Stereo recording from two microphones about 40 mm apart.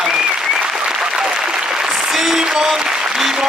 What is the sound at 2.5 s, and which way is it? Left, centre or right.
Applause, centre.